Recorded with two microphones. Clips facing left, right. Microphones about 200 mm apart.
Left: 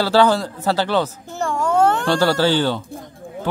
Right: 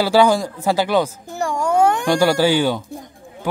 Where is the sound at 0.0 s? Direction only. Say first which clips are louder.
Right 1 dB; 10° right (ahead or behind).